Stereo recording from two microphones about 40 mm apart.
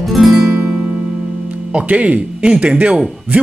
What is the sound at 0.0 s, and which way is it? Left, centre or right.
Music, centre.